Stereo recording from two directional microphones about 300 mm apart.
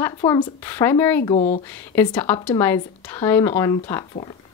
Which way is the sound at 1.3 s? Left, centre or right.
Left.